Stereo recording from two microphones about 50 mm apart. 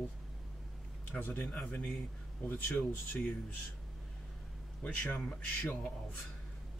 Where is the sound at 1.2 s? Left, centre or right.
Left.